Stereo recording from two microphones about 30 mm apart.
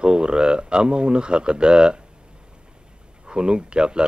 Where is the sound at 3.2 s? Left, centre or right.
Right.